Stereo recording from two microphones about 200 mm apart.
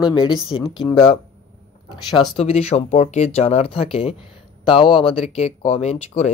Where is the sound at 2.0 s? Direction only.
30° left (ahead or behind).